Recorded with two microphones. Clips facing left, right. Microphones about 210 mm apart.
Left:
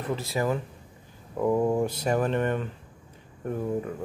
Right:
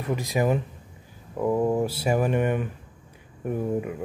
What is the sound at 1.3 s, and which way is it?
Speech, 5° right (ahead or behind).